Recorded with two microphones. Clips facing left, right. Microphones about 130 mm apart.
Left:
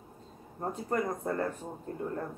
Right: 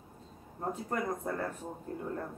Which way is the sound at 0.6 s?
5° left (ahead or behind).